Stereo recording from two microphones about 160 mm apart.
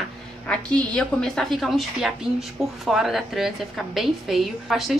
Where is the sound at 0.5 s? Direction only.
5° left (ahead or behind).